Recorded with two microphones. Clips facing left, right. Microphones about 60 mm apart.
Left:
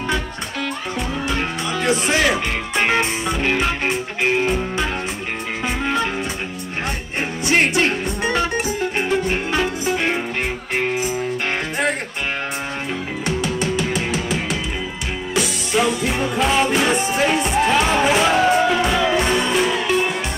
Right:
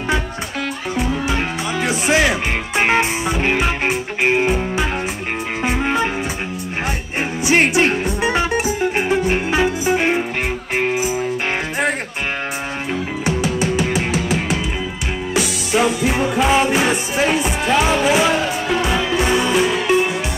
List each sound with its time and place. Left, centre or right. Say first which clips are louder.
0.9 s music: right 4 dB; centre
5.8 s music: right 2 dB; centre
7.4 s music: right 2 dB; centre
13.2 s music: right 2 dB; centre